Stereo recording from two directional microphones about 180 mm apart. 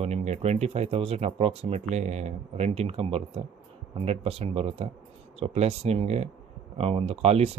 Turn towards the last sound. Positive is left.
turn(degrees=-35)  # may be behind; listen again after turning